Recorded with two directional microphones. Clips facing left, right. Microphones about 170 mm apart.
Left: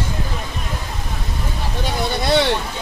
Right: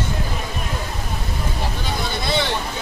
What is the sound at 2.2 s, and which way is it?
Speech, 70° left (ahead or behind).